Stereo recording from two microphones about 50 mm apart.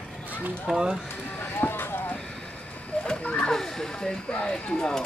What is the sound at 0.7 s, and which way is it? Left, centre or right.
Speech, centre.